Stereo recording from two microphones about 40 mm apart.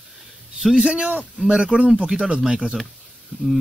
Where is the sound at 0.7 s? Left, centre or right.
Right.